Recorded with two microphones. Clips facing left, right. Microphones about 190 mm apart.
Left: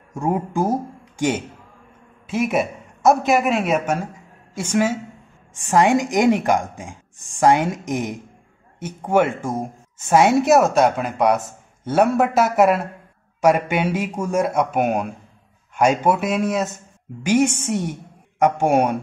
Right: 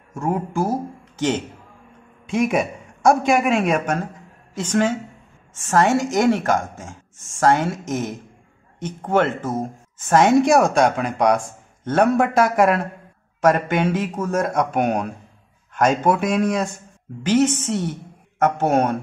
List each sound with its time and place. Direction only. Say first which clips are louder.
0.1 s a man's voice: left 1 dB; 15° left (ahead or behind)